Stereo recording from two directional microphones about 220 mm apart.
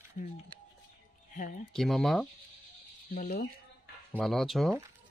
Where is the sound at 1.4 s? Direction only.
35° left (ahead or behind).